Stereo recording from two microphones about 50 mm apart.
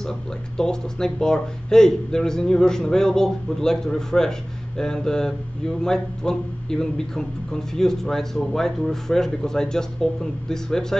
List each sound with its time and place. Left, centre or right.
0.0 s speech: centre